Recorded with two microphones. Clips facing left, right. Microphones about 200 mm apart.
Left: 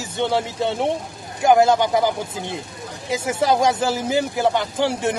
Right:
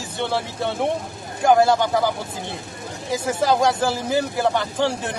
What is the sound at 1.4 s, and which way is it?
Speech, 20° left (ahead or behind).